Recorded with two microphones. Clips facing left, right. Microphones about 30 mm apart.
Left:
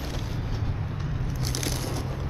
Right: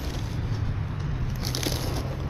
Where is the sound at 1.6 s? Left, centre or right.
Centre.